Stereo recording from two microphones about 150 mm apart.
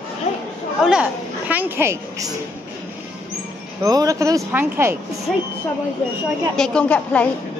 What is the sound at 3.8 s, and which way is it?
A woman's voice, 25° right (ahead or behind).